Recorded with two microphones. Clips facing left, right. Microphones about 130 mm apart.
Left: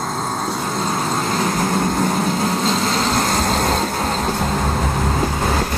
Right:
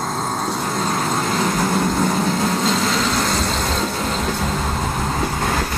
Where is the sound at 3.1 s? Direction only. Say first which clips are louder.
Left 2 dB; 50° left (ahead or behind).